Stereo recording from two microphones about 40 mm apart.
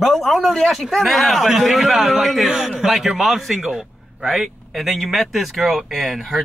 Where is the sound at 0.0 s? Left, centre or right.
Centre.